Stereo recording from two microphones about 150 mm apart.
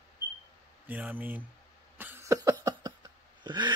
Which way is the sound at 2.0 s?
15° right (ahead or behind).